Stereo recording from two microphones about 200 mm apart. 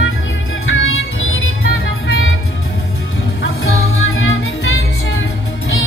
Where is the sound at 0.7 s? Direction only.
85° left.